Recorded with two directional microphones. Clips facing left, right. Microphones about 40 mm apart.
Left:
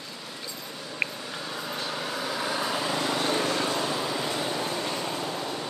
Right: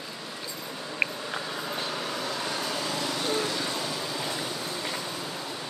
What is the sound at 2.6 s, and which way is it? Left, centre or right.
Vehicle, centre.